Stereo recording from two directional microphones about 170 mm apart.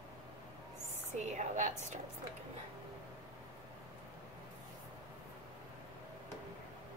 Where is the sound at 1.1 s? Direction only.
45° right (ahead or behind).